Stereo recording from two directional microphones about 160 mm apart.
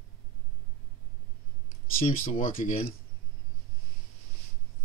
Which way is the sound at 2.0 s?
55° left (ahead or behind).